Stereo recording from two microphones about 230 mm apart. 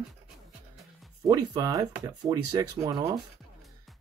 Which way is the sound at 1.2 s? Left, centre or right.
Centre.